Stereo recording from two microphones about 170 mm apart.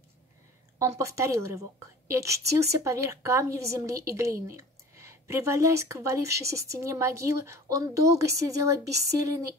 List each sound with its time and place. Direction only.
0.7 s a woman's voice: 20° right (ahead or behind)